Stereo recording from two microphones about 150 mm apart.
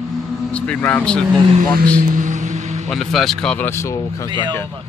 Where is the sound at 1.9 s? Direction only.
60° right (ahead or behind).